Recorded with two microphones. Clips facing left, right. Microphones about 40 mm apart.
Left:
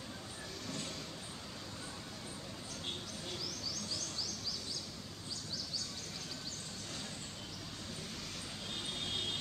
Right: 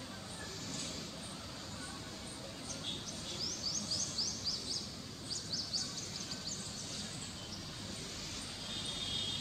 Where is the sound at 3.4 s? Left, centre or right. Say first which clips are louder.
Even; centre.